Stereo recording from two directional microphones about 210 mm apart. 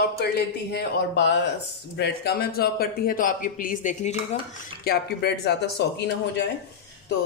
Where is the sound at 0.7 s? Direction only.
55° left (ahead or behind); by 4.4 s 35° left (ahead or behind).